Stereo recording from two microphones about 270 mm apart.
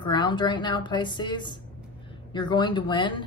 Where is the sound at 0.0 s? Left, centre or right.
Centre.